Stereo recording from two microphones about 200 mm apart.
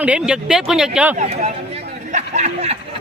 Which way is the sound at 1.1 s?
35° right (ahead or behind).